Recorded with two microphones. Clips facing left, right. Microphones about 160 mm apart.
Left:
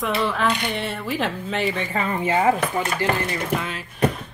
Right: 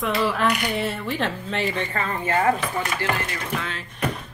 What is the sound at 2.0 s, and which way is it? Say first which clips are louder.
Speech: left 3 dB; 15° left (ahead or behind).